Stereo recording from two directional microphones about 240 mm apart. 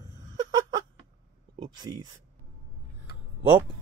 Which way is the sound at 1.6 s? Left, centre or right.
Centre.